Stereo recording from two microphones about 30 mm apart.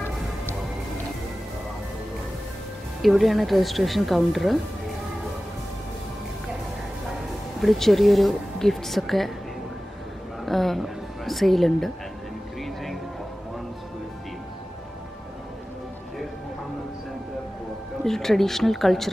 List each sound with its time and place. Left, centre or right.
3.0 s speech: centre
7.6 s speech: centre
10.4 s a man's voice: centre
12.6 s music: centre
18.0 s speech: centre